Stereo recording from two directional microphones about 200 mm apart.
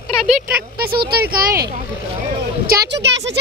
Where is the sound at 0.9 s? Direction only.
50° right (ahead or behind).